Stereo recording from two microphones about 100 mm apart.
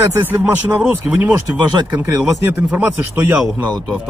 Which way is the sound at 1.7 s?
50° right (ahead or behind).